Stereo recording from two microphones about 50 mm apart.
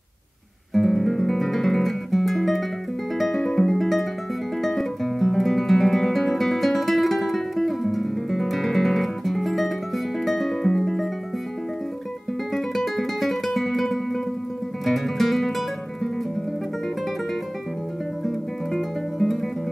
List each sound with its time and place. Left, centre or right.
0.7 s guitar: centre
3.2 s music: centre
4.6 s guitar: centre
10.2 s music: centre
12.5 s music: centre
18.2 s guitar: centre